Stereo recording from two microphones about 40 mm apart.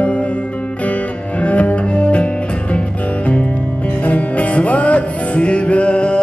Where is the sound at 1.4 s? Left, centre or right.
Left.